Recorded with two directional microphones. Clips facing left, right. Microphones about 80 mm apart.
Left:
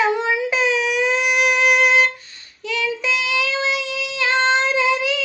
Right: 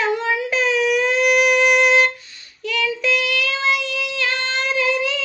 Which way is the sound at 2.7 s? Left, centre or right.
Centre.